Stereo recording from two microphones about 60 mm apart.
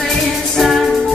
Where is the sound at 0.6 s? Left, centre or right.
Centre.